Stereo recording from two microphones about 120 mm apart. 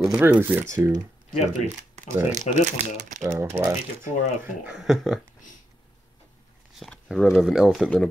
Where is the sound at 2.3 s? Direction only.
75° right (ahead or behind).